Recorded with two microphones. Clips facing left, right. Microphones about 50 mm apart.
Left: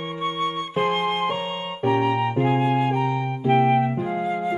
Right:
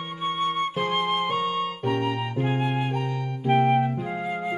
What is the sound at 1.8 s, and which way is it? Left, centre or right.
Music, left.